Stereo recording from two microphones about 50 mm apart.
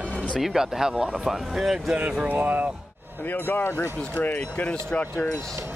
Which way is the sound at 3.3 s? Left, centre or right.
Left.